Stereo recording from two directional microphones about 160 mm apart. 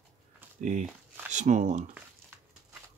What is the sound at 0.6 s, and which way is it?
Speech, 50° right (ahead or behind).